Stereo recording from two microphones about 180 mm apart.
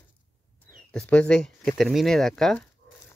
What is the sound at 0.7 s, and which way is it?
Speech, 5° left (ahead or behind).